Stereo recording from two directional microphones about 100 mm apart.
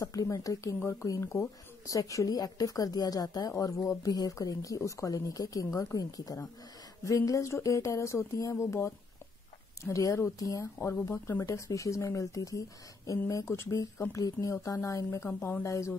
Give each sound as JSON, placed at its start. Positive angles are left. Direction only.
{"t": 0.0, "sound": "speech", "side_deg": 35}
{"t": 15.2, "sound": "speech", "side_deg": 15}
{"t": 15.6, "sound": "speech", "side_deg": 30}